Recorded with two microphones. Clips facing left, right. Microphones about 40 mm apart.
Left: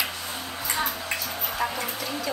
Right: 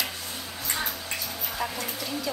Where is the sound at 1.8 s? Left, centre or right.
Centre.